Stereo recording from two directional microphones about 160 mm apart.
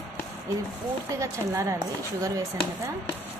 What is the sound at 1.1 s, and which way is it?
A woman's voice, 20° right (ahead or behind).